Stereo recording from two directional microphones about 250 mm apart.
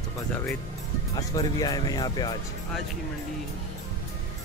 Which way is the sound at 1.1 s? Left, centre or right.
Centre.